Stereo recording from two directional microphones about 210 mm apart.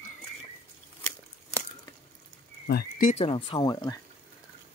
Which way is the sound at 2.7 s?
45° left (ahead or behind).